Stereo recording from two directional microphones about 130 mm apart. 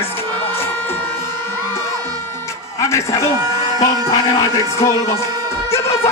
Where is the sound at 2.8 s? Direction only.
20° left (ahead or behind).